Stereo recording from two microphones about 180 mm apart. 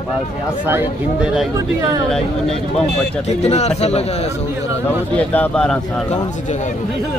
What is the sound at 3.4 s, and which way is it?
Speech, 35° left (ahead or behind).